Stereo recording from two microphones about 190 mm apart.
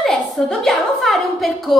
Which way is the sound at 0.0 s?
Centre (ahead or behind).